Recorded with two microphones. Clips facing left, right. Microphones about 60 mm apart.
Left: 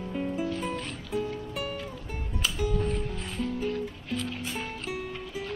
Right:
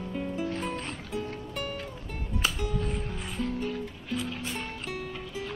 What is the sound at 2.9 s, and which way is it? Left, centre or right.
Music, centre.